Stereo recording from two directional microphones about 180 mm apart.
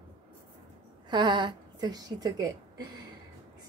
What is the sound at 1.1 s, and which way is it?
A woman's voice, 25° right (ahead or behind).